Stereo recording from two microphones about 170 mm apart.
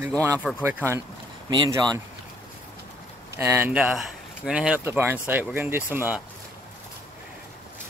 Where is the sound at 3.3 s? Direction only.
15° right (ahead or behind).